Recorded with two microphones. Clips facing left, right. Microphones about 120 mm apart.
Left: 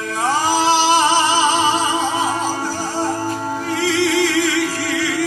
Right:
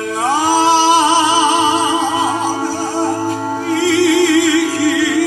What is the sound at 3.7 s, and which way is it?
Music, 15° right (ahead or behind).